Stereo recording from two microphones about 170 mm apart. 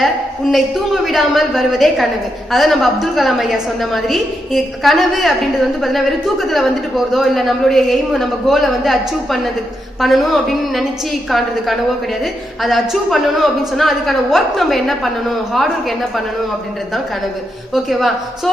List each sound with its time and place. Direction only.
0.0 s a man's voice: centre (ahead or behind)
17.8 s a man's voice: centre (ahead or behind)